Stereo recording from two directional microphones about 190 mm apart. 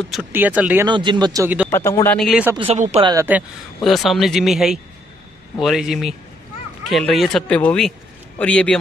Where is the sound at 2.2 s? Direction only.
Centre (ahead or behind).